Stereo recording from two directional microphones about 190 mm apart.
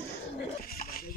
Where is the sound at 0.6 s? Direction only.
50° left (ahead or behind).